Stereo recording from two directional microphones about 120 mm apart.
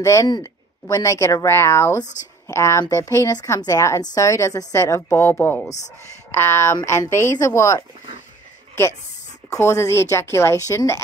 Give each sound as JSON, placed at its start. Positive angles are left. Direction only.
{"t": 0.0, "sound": "a woman's voice", "side_deg": 25}
{"t": 9.5, "sound": "a woman's voice", "side_deg": 25}